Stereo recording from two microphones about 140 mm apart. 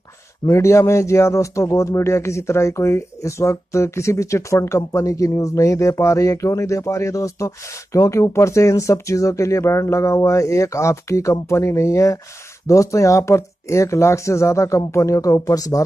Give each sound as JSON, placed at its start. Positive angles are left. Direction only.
{"t": 0.5, "sound": "a man's voice", "side_deg": 20}